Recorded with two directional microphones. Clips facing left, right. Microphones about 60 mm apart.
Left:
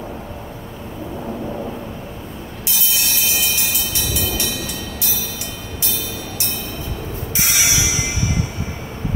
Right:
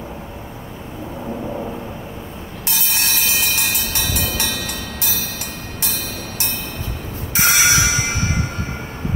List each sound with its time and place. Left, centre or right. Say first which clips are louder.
2.8 s train: right 1 dB; right
7.3 s music: right 6 dB; right